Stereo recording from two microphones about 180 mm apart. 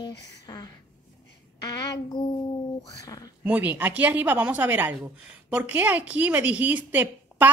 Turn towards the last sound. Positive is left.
turn(degrees=-10)  # may be behind; listen again after turning